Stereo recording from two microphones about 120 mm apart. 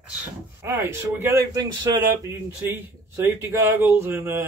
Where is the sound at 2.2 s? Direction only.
20° right (ahead or behind).